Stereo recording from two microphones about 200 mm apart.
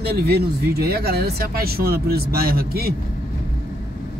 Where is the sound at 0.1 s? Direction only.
50° right (ahead or behind).